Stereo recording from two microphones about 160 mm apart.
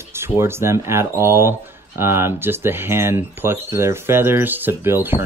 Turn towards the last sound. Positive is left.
turn(degrees=-15)  # may be behind; listen again after turning